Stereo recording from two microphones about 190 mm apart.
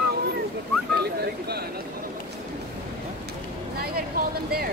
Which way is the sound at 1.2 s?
55° right (ahead or behind).